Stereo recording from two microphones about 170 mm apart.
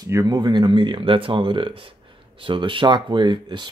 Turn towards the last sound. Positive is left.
turn(degrees=-25)  # may be behind; listen again after turning